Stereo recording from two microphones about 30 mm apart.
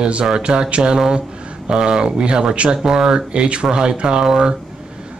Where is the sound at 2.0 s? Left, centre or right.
Right.